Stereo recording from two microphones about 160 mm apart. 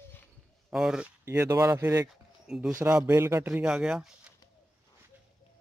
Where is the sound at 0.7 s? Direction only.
5° right (ahead or behind).